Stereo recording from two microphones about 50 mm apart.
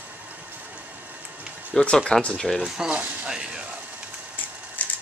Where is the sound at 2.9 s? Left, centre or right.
Right.